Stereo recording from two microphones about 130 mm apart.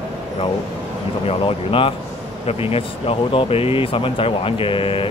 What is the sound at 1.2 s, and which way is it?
Speech, 45° left (ahead or behind).